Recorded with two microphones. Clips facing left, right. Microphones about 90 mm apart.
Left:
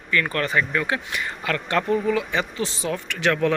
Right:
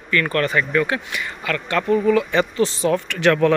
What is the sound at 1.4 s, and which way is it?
Speech, 30° left (ahead or behind).